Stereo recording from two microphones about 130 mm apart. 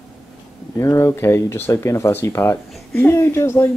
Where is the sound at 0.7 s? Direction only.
20° left (ahead or behind).